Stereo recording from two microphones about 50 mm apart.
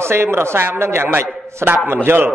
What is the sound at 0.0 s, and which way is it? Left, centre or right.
A man's voice, right.